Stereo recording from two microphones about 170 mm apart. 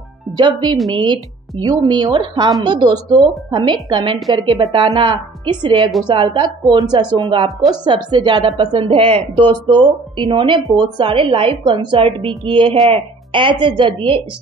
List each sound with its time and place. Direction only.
0.4 s a woman's voice: 25° right (ahead or behind)